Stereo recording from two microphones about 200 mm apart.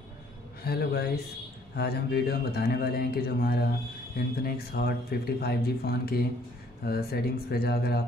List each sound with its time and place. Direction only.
0.7 s speech: 55° left (ahead or behind)